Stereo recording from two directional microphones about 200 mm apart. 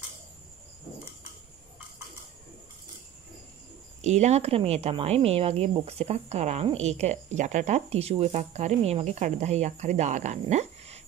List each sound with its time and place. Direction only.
4.0 s speech: 35° right (ahead or behind)